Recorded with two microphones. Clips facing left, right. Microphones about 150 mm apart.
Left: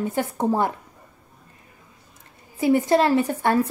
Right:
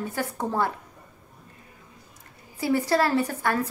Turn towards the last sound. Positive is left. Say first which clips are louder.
# left 4 dB
turn(degrees=25)  # may be behind; listen again after turning